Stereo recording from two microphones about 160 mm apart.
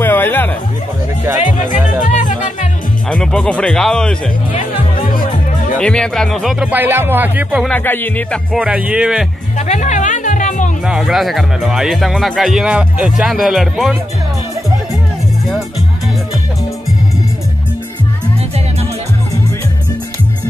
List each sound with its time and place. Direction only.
0.0 s music: 10° left (ahead or behind)
2.0 s music: 50° left (ahead or behind)
3.1 s speech: 5° left (ahead or behind)
5.0 s music: 60° left (ahead or behind)
5.8 s speech: 5° left (ahead or behind)
6.6 s music: 10° right (ahead or behind)
7.6 s speech: 10° left (ahead or behind)
8.5 s speech: 5° right (ahead or behind)
9.6 s music: 50° left (ahead or behind)
10.9 s speech: centre (ahead or behind)